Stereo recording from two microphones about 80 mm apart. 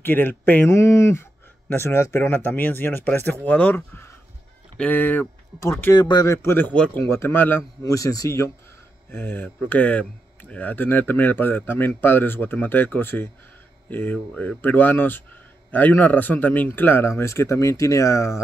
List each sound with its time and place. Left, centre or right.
0.0 s speech: left
0.7 s a man's voice: left
5.9 s a man's voice: left
6.2 s a man's voice: left
6.7 s speech: centre
7.0 s a man's voice: left
7.8 s speech: left
9.1 s a man's voice: left